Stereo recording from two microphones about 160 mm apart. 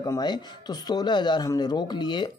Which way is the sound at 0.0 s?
25° left (ahead or behind).